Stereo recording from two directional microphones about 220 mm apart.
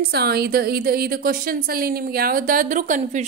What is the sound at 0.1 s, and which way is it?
A woman's voice, 45° right (ahead or behind).